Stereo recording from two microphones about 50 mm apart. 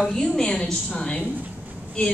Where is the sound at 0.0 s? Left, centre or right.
Centre.